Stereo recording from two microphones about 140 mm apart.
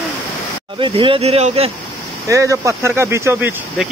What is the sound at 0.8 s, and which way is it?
Speech, 40° right (ahead or behind).